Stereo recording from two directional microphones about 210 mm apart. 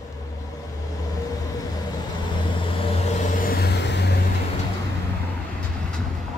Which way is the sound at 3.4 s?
50° left (ahead or behind).